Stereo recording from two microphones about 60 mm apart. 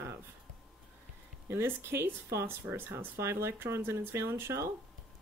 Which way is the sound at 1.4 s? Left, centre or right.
Right.